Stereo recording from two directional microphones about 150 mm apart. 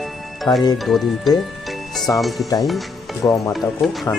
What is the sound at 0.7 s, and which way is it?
Speech, centre (ahead or behind).